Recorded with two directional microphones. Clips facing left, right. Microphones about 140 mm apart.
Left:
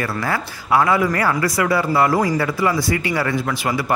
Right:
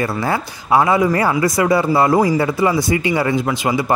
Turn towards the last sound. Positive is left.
turn(degrees=-20)  # may be behind; listen again after turning